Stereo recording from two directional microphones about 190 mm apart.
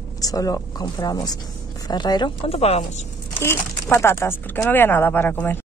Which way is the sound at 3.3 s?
15° left (ahead or behind).